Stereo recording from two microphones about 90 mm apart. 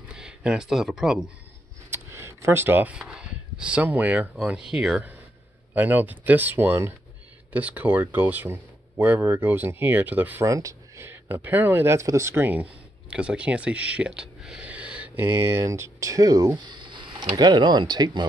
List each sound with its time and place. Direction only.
0.1 s speech: 10° right (ahead or behind)
1.9 s camera: 30° right (ahead or behind)
3.0 s speech: 10° right (ahead or behind)
10.4 s speech: 35° right (ahead or behind)
13.1 s speech: 10° right (ahead or behind)
15.2 s speech: 30° right (ahead or behind); by 18.2 s 50° right (ahead or behind)